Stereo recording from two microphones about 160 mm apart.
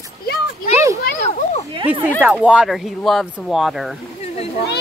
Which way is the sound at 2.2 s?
5° right (ahead or behind).